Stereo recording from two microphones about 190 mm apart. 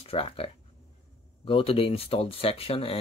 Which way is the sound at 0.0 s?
30° left (ahead or behind).